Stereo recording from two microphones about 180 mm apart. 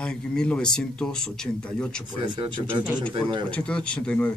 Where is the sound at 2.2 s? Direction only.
25° right (ahead or behind).